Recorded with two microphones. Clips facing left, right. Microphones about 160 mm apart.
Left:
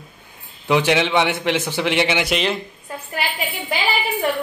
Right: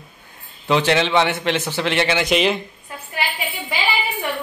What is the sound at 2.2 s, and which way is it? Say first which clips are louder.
Speech: right 3 dB; centre (ahead or behind).